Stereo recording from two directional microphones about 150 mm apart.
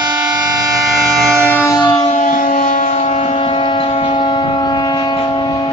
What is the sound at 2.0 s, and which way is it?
Civil defense siren, 55° left (ahead or behind).